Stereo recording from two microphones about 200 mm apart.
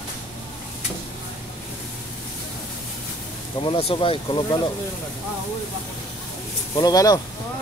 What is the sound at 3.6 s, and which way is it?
Speech, 25° left (ahead or behind).